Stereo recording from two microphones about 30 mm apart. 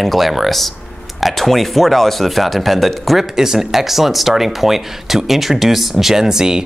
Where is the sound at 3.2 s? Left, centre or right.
Centre.